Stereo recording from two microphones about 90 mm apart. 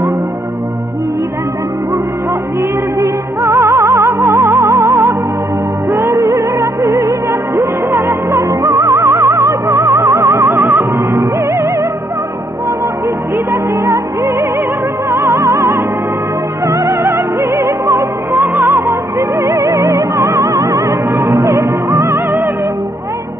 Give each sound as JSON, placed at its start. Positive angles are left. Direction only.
{"t": 3.0, "sound": "music", "side_deg": -35}
{"t": 13.5, "sound": "music", "side_deg": -35}